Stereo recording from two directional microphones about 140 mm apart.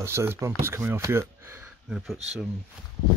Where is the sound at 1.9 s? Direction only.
Centre (ahead or behind).